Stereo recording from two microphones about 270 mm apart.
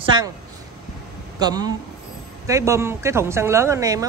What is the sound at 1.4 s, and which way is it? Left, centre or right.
Speech, centre.